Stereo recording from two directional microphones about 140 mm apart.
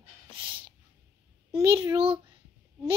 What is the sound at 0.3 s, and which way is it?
Snort, 40° right (ahead or behind).